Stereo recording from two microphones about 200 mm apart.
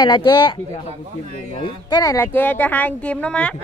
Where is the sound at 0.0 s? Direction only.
25° left (ahead or behind).